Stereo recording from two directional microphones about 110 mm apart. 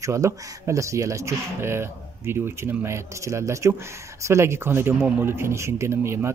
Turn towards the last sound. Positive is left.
turn(degrees=-25)  # may be behind; listen again after turning